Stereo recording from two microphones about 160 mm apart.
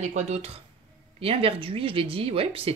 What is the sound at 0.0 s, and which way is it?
Speech, 45° right (ahead or behind).